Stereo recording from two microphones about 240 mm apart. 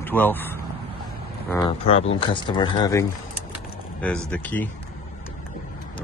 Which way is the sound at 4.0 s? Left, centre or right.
Centre.